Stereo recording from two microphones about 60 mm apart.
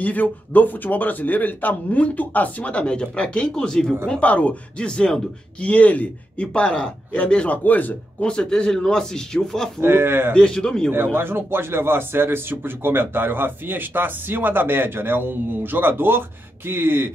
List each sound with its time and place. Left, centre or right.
0.0 s speech: left
8.3 s speech: centre
9.8 s speech: right
10.3 s speech: centre
11.1 s speech: right